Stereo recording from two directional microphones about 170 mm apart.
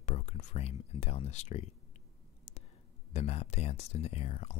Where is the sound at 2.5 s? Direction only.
40° left (ahead or behind).